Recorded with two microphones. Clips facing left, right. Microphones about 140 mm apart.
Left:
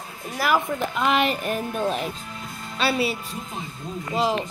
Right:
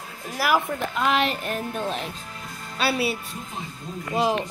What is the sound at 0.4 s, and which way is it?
A woman's voice, 5° right (ahead or behind).